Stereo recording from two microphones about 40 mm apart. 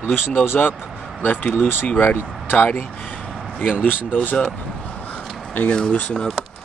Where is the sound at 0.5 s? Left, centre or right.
Left.